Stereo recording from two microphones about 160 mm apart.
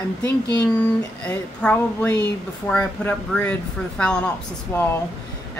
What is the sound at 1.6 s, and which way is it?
Speech, 10° left (ahead or behind).